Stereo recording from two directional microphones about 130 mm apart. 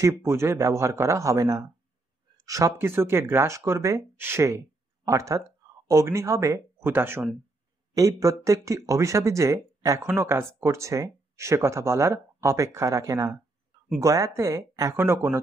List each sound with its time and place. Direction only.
0.0 s speech: 20° right (ahead or behind)